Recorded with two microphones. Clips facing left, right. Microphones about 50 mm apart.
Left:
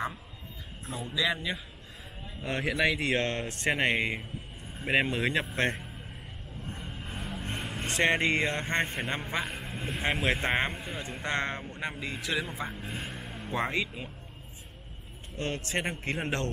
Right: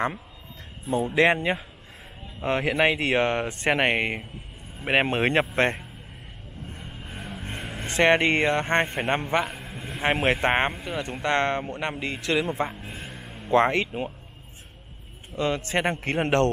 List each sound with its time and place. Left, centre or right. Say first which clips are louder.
0.8 s speech: right 10 dB; right
2.4 s speech: right 6 dB; right
3.2 s speech: right 7 dB; right
3.6 s speech: right 4 dB; right
6.8 s a sound: right 2 dB; centre
7.8 s speech: right 6 dB; right
9.5 s a sound: even; centre
10.2 s speech: right 6 dB; right
13.0 s a sound: even; centre
13.5 s speech: right 10 dB; right
15.3 s a man's voice: right 7 dB; right
15.9 s speech: right 8 dB; right